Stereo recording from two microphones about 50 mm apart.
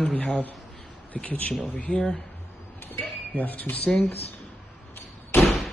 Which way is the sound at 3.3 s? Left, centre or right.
Left.